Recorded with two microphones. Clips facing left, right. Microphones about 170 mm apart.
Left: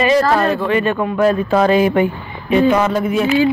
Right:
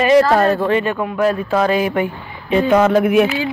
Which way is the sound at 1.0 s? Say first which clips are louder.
Left 2 dB; 5° right (ahead or behind).